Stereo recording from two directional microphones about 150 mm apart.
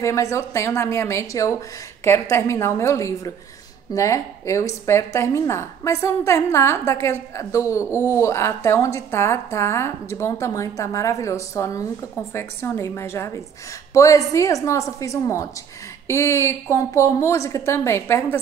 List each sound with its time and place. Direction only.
0.0 s a woman's voice: 20° left (ahead or behind)